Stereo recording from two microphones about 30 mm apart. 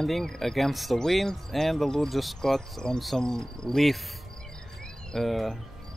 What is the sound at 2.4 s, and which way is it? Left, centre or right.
Speech, centre.